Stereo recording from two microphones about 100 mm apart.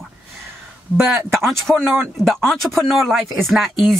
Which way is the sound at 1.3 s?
Centre (ahead or behind).